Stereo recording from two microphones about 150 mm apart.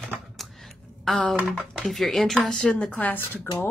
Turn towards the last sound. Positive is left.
turn(degrees=15)  # may be behind; listen again after turning